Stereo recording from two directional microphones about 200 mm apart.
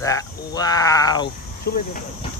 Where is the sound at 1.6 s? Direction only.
45° left (ahead or behind).